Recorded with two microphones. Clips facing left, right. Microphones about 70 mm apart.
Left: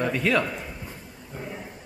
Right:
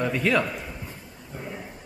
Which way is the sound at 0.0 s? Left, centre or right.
Centre.